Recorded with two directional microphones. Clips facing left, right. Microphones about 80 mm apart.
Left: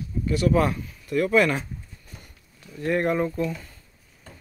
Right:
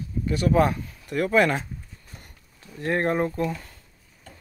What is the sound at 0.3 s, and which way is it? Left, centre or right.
Speech, right.